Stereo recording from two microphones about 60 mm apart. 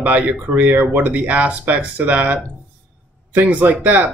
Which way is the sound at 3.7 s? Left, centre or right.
Right.